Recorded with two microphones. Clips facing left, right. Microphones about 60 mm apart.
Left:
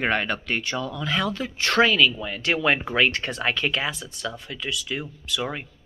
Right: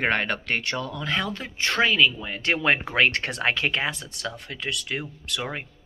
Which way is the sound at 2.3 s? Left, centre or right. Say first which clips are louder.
Even; right.